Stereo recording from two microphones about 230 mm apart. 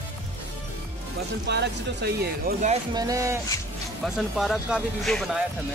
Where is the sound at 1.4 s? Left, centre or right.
Right.